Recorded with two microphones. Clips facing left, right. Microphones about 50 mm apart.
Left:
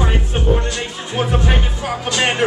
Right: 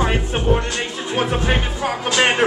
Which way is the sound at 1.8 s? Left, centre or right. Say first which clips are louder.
Right 2 dB; right.